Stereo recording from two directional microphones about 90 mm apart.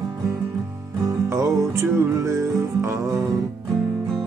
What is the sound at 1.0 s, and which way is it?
Music, 40° right (ahead or behind).